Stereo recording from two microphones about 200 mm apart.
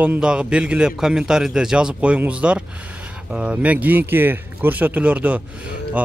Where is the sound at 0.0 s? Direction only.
5° right (ahead or behind).